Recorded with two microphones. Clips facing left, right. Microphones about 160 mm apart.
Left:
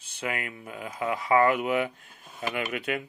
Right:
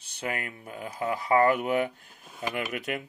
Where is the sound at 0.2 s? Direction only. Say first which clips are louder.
Left 1 dB; 40° right (ahead or behind).